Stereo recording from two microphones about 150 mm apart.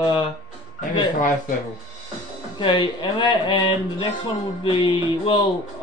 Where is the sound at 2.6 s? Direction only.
35° left (ahead or behind).